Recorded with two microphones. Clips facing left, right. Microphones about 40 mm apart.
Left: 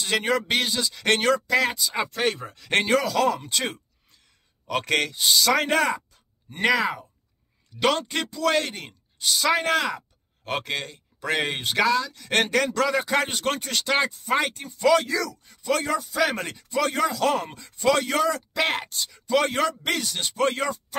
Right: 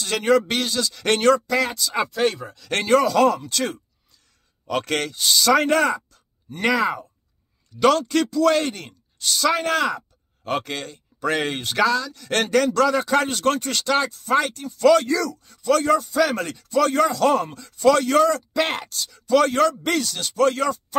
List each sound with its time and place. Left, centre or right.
0.0 s speech: centre
1.0 s speech: centre
1.8 s speech: centre
2.1 s speech: left
2.9 s speech: centre
3.3 s speech: left
4.6 s speech: centre
8.0 s speech: left
8.4 s speech: centre
17.5 s speech: centre
18.8 s speech: centre